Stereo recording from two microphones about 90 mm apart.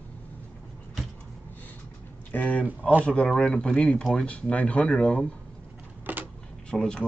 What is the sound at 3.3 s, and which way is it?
Speech, 10° left (ahead or behind).